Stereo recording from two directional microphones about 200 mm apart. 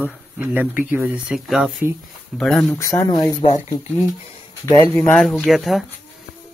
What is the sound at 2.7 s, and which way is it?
Speech, 15° left (ahead or behind).